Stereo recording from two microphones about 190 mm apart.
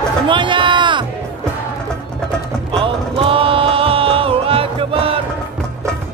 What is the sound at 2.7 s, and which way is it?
Music, 30° right (ahead or behind).